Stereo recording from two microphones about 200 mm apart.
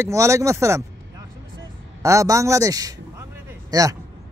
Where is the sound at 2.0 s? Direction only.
15° right (ahead or behind).